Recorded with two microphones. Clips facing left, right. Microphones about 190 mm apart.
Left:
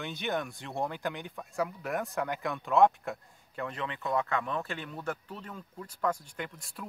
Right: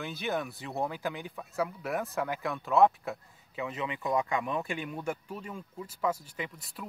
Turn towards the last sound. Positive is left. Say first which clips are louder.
# right 1 dB
turn(degrees=0)  # may be behind; listen again after turning